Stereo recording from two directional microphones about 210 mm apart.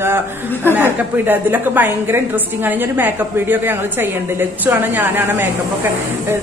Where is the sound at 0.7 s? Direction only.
10° right (ahead or behind).